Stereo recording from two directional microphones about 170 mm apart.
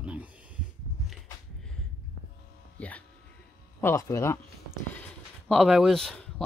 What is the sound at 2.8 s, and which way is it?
Speech, 10° left (ahead or behind).